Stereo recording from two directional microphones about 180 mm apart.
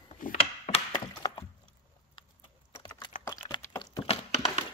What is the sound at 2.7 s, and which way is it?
Typing, 20° left (ahead or behind).